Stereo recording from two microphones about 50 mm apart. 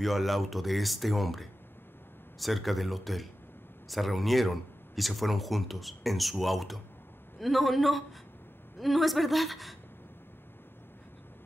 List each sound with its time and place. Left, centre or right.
0.0 s speech: centre